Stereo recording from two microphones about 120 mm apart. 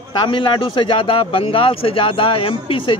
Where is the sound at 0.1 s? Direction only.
40° left (ahead or behind).